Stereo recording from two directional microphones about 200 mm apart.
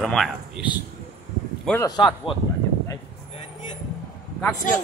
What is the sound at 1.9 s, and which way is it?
Speech, 25° left (ahead or behind).